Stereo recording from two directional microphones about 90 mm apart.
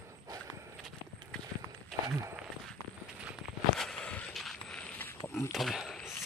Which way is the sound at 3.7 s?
5° left (ahead or behind).